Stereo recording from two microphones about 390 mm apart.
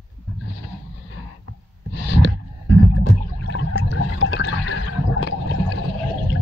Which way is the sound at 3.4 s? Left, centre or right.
Left.